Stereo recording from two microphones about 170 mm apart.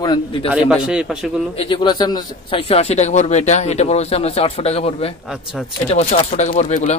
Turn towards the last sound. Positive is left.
turn(degrees=45)  # may be behind; listen again after turning